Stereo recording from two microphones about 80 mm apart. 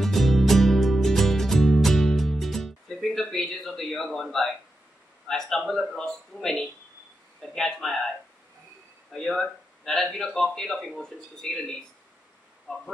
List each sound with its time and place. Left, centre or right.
0.0 s music: centre
5.3 s speech: centre
9.1 s speech: centre